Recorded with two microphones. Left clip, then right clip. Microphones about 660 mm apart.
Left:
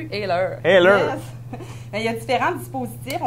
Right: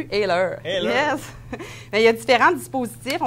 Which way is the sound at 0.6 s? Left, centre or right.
Left.